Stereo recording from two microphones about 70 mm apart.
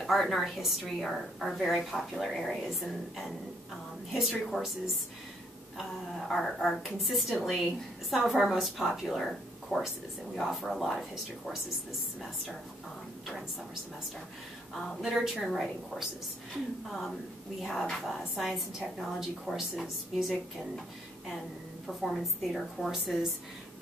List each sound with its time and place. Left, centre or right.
0.0 s a woman's voice: centre
6.1 s a woman's voice: centre
14.8 s a woman's voice: centre
15.0 s a woman's voice: centre
16.9 s a woman's voice: centre
22.0 s a woman's voice: centre